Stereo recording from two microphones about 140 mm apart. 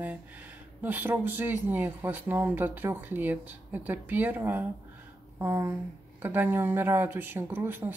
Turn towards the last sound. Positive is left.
turn(degrees=-15)  # may be behind; listen again after turning